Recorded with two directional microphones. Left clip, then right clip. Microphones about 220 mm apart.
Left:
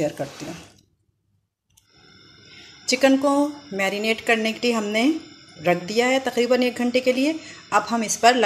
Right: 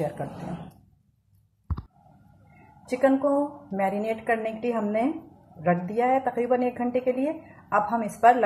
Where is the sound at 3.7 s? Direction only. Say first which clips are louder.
Left 3 dB; 40° left (ahead or behind).